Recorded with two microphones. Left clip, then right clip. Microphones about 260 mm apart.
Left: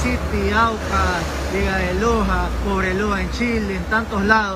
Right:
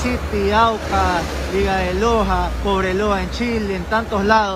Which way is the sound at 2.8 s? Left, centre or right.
Centre.